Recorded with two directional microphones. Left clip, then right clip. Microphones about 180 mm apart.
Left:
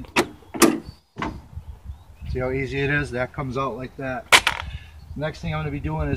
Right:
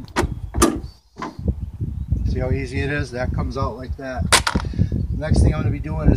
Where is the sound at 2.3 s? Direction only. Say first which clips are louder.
Left 1 dB; 15° right (ahead or behind).